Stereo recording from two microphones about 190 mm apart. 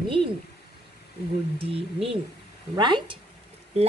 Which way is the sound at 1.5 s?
30° right (ahead or behind).